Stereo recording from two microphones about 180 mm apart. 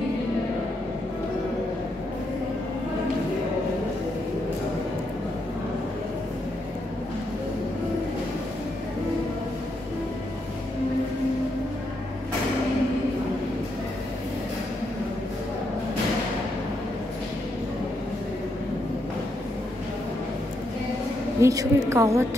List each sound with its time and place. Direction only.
21.4 s a woman's voice: 15° right (ahead or behind)